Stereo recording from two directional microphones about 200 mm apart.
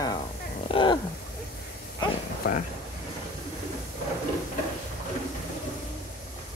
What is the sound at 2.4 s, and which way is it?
Speech, 45° left (ahead or behind).